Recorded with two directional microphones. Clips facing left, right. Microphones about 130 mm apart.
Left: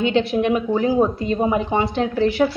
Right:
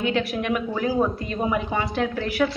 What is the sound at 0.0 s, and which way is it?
A woman's voice, 25° left (ahead or behind).